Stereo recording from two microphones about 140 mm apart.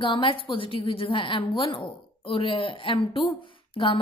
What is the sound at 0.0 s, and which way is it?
Speech, 35° left (ahead or behind).